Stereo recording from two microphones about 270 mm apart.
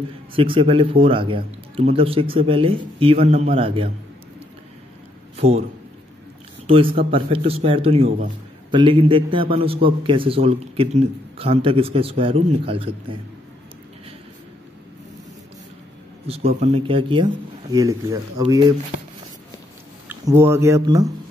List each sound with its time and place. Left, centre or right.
0.3 s a man's voice: centre
5.3 s a man's voice: right
6.7 s a man's voice: centre
16.3 s speech: right
20.1 s speech: centre